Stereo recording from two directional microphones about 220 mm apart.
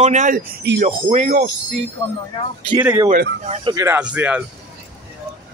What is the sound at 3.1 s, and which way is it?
Speech, 45° right (ahead or behind).